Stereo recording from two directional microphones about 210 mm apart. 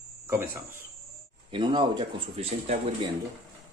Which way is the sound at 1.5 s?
20° right (ahead or behind).